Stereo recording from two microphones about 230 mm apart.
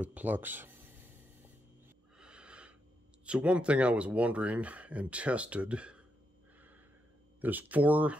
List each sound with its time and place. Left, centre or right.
0.0 s speech: centre
2.1 s wheeze: centre
3.3 s speech: centre
7.4 s speech: centre